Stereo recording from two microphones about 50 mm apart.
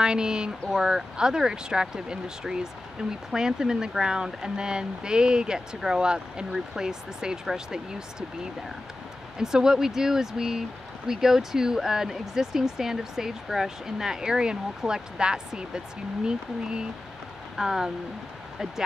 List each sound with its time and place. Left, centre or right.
0.0 s speech: centre
9.4 s speech: centre